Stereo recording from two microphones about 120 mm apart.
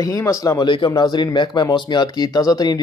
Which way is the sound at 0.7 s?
40° left (ahead or behind).